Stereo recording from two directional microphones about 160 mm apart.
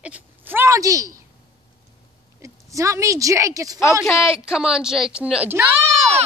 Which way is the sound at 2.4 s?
20° right (ahead or behind).